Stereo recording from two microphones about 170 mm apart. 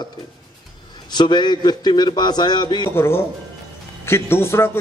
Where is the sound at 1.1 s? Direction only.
25° left (ahead or behind).